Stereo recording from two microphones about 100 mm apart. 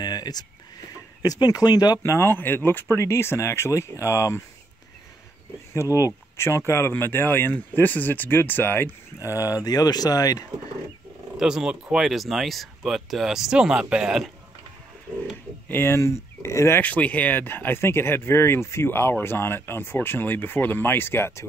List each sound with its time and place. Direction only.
0.0 s a sound: 45° left (ahead or behind)
1.2 s speech: 40° left (ahead or behind)
2.1 s speech: 25° left (ahead or behind)
5.7 s speech: 30° left (ahead or behind)
11.3 s speech: 5° right (ahead or behind)
15.7 s speech: 25° left (ahead or behind)
16.8 s speech: 15° left (ahead or behind)